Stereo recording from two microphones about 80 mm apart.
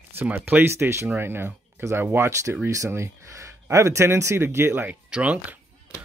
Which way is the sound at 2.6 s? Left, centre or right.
Right.